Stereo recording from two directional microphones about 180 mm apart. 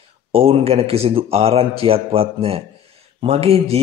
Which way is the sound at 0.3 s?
30° right (ahead or behind).